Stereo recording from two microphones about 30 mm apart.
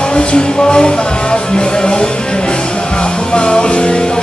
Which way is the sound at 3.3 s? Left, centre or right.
Left.